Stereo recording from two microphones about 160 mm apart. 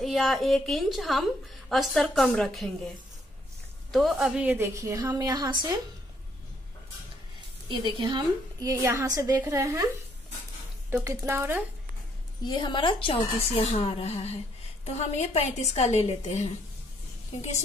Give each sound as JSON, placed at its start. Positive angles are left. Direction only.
{"t": 0.0, "sound": "a woman's voice", "side_deg": 0}
{"t": 3.9, "sound": "a woman's voice", "side_deg": 0}
{"t": 7.6, "sound": "a woman's voice", "side_deg": -30}
{"t": 10.9, "sound": "speech", "side_deg": -15}
{"t": 12.4, "sound": "a woman's voice", "side_deg": 30}